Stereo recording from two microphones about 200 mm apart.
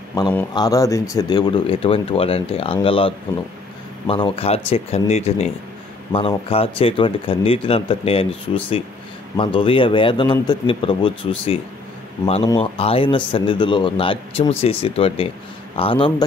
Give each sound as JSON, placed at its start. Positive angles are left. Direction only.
{"t": 0.6, "sound": "speech", "side_deg": 15}
{"t": 4.1, "sound": "speech", "side_deg": 30}
{"t": 12.5, "sound": "speech", "side_deg": 30}